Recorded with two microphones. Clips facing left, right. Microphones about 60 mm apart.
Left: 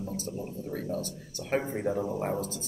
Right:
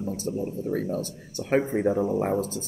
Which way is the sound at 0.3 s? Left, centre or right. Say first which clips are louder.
Right 8 dB; right.